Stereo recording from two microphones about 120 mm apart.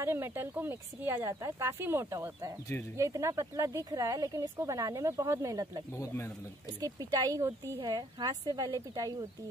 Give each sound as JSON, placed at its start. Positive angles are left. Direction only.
{"t": 0.0, "sound": "speech", "side_deg": -20}
{"t": 5.9, "sound": "speech", "side_deg": 25}
{"t": 6.8, "sound": "speech", "side_deg": -30}